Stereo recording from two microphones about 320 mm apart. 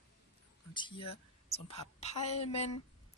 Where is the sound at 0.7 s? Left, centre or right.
Centre.